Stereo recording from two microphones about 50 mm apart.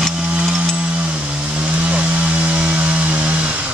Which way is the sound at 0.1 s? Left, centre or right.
Right.